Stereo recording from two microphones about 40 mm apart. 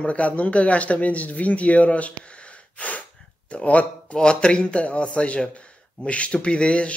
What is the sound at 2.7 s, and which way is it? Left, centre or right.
Gasp, left.